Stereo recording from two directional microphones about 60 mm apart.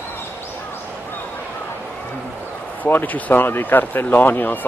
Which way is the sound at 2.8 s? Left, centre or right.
Left.